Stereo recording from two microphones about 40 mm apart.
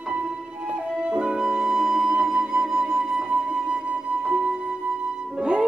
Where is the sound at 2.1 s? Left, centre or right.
Right.